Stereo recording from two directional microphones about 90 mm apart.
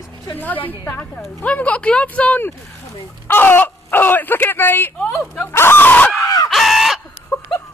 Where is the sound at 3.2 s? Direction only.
25° left (ahead or behind).